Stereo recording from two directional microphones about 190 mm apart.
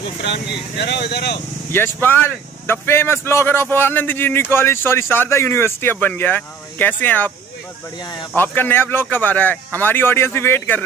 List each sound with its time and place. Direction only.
0.2 s speech: 65° left (ahead or behind)
1.7 s speech: 10° left (ahead or behind)
8.4 s speech: 10° left (ahead or behind)